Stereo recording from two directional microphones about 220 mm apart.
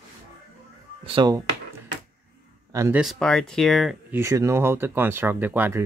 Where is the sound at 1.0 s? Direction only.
20° right (ahead or behind).